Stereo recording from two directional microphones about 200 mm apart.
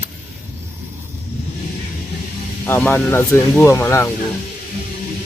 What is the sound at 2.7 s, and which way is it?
Speech, 10° left (ahead or behind).